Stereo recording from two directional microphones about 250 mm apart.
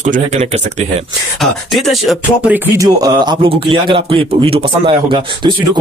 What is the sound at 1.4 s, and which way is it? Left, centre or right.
Speech, centre.